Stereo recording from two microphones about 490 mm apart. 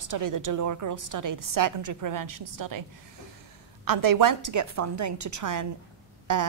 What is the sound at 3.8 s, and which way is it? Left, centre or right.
A woman's voice, right.